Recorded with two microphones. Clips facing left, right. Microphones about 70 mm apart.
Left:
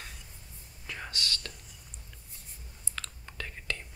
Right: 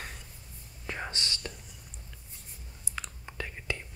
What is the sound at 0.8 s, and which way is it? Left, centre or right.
Whispering, right.